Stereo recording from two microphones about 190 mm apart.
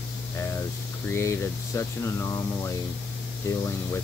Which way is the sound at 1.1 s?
15° left (ahead or behind).